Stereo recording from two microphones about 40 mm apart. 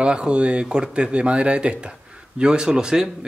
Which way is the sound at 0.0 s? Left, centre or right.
Right.